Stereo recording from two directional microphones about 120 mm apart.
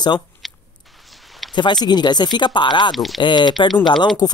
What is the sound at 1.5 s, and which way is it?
Speech, 40° left (ahead or behind).